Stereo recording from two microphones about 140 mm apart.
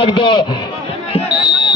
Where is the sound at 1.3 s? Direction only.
35° left (ahead or behind).